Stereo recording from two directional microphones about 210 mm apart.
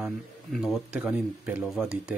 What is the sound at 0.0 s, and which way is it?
Speech, centre (ahead or behind).